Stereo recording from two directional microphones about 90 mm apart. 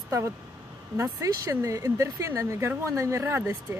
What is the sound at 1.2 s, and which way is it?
Speech, 40° right (ahead or behind).